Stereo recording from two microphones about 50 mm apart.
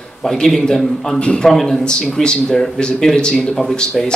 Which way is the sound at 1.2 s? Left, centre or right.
Left.